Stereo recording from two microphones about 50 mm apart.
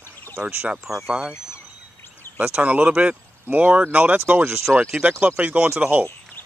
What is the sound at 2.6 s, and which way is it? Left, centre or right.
Speech, right.